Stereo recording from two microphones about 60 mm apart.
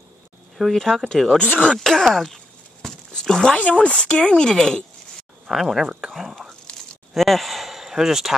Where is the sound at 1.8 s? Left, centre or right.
Centre.